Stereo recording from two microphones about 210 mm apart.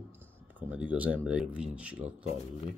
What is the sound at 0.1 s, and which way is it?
Speech, 10° right (ahead or behind).